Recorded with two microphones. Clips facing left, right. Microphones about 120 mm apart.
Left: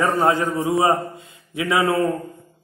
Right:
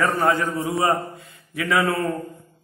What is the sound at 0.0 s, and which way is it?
A man's voice, 20° left (ahead or behind).